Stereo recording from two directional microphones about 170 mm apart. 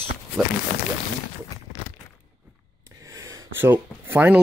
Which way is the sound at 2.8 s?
20° right (ahead or behind).